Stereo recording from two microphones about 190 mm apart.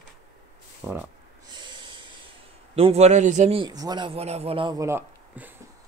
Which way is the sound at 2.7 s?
35° right (ahead or behind).